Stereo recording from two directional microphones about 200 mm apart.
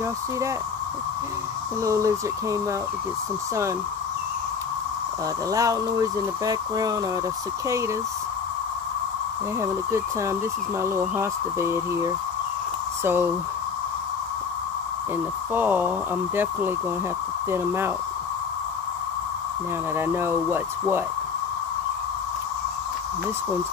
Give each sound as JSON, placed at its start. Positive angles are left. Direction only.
{"t": 1.8, "sound": "speech", "side_deg": -15}
{"t": 5.5, "sound": "speech", "side_deg": -15}
{"t": 9.6, "sound": "speech", "side_deg": -15}
{"t": 15.5, "sound": "speech", "side_deg": -10}
{"t": 17.5, "sound": "speech", "side_deg": -10}
{"t": 20.0, "sound": "speech", "side_deg": -10}